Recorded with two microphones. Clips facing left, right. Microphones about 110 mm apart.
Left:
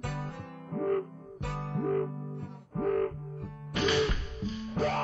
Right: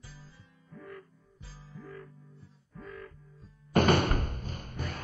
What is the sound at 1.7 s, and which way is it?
Music, 70° left (ahead or behind).